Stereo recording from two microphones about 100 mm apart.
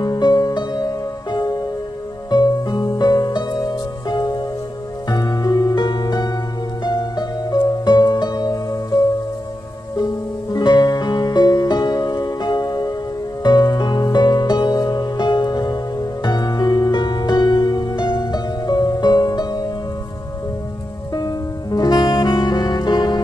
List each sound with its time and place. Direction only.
0.0 s music: 45° left (ahead or behind)
10.5 s music: 45° left (ahead or behind)
21.1 s music: 40° left (ahead or behind)